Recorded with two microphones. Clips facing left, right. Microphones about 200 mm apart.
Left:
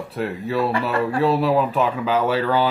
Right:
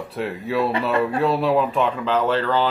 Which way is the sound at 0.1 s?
Centre (ahead or behind).